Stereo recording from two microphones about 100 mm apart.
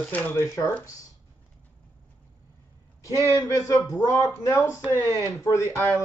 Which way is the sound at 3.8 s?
30° left (ahead or behind).